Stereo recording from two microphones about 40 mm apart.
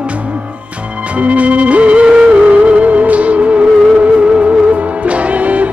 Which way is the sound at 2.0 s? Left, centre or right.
Right.